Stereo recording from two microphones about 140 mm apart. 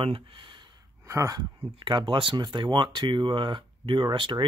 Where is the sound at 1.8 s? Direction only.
35° right (ahead or behind).